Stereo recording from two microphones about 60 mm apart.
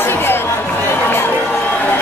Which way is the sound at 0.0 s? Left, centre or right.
Left.